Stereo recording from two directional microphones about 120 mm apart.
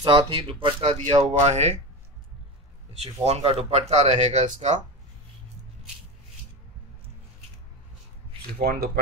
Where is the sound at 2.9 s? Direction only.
60° right (ahead or behind).